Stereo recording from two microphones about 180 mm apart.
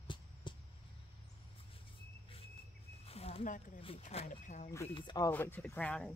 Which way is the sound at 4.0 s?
40° left (ahead or behind).